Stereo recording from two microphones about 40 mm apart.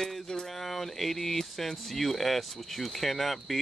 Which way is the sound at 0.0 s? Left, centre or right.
Centre.